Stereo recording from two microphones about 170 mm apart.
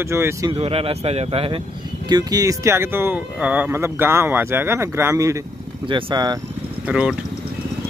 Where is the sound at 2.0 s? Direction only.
25° right (ahead or behind).